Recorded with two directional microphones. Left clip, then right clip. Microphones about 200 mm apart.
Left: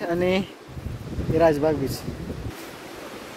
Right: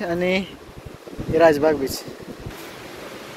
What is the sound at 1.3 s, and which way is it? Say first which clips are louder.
Speech: right 4 dB; 5° right (ahead or behind).